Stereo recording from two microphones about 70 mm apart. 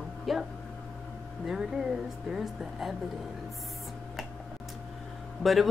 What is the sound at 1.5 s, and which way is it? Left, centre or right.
A woman's voice, centre.